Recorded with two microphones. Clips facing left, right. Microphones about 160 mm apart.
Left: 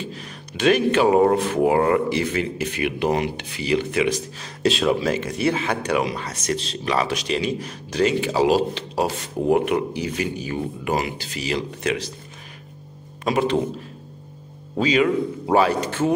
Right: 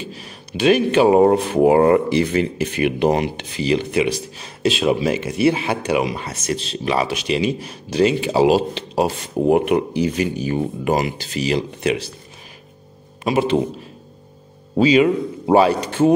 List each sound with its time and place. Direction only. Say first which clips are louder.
0.5 s speech: right 3 dB; 20° right (ahead or behind)
4.6 s speech: right 2 dB; 10° right (ahead or behind)
7.5 s speech: right 4 dB; 25° right (ahead or behind)
11.3 s speech: right 6 dB; 20° right (ahead or behind)
13.2 s speech: right 3 dB; 25° right (ahead or behind)
14.8 s speech: right 5 dB; 25° right (ahead or behind)